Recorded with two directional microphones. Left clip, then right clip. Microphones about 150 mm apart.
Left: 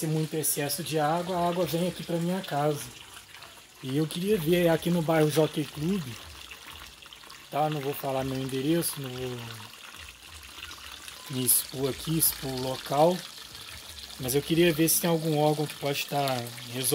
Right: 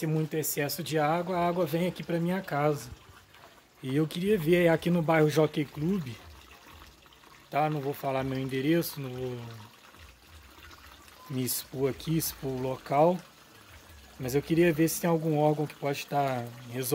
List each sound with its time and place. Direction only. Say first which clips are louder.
0.0 s speech: even; 10° right (ahead or behind)
3.9 s speech: even; 10° right (ahead or behind)
7.5 s speech: even; 15° right (ahead or behind)
11.3 s speech: left 2 dB; 15° right (ahead or behind)
14.2 s speech: left 1 dB; 5° right (ahead or behind)